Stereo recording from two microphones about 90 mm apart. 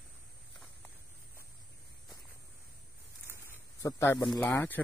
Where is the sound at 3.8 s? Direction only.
30° left (ahead or behind).